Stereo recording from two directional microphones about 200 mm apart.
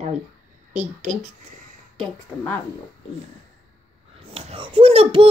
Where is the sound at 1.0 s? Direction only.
Centre (ahead or behind).